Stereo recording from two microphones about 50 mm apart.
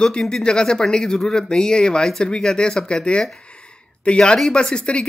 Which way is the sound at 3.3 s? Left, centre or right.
Left.